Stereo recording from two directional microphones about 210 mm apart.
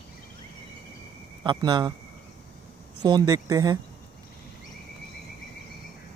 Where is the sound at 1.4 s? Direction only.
20° right (ahead or behind).